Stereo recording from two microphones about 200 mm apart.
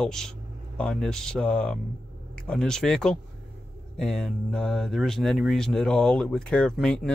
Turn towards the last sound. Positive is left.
turn(degrees=5)  # may be behind; listen again after turning